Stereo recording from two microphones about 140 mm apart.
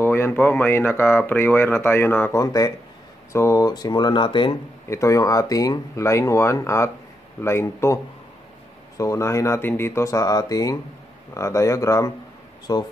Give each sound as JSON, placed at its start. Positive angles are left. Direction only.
{"t": 0.0, "sound": "speech", "side_deg": 15}
{"t": 2.4, "sound": "speech", "side_deg": 25}
{"t": 4.8, "sound": "speech", "side_deg": 20}